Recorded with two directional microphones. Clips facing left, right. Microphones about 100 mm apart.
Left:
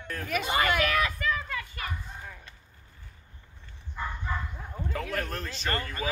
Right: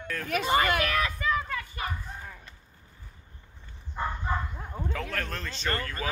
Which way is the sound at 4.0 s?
30° right (ahead or behind).